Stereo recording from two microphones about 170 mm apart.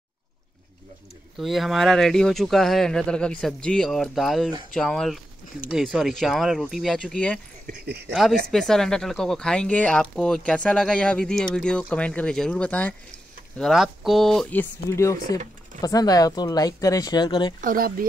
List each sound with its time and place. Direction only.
1.4 s speech: centre (ahead or behind)
7.6 s speech: 70° right (ahead or behind)
8.1 s speech: centre (ahead or behind); by 17.6 s 25° left (ahead or behind)
17.6 s speech: 55° right (ahead or behind)